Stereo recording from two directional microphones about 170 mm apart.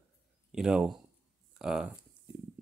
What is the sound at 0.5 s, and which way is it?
Speech, 5° right (ahead or behind).